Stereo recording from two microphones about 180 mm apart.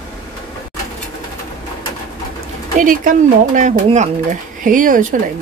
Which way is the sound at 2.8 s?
45° right (ahead or behind).